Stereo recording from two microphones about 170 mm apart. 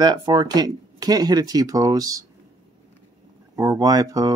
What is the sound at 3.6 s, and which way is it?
Speech, 20° right (ahead or behind).